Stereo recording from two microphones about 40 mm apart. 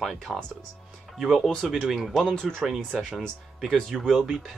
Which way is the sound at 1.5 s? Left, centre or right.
Centre.